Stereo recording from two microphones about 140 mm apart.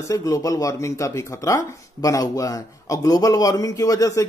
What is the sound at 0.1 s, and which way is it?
Speech, 25° left (ahead or behind).